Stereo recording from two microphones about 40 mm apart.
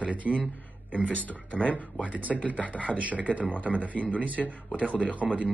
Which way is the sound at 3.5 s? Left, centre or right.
Left.